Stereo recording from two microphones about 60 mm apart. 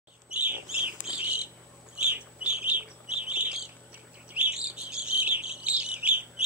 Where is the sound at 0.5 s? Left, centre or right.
Right.